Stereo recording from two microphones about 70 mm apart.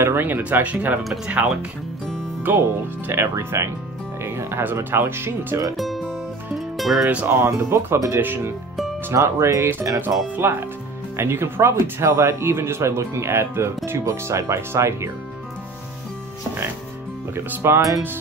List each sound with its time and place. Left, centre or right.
0.0 s speech: right; by 1.5 s centre
3.1 s speech: right
5.8 s music: centre
7.1 s speech: centre
7.3 s speech: right
9.1 s speech: right
9.9 s speech: right
17.3 s speech: right